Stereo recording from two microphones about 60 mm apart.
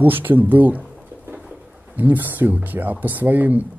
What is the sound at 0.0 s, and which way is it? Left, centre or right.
Speech, right.